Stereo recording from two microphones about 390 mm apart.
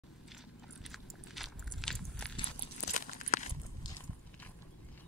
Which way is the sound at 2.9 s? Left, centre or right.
Left.